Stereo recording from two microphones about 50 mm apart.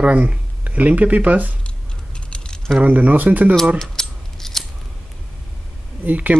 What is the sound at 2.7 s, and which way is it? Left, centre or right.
Speech, right.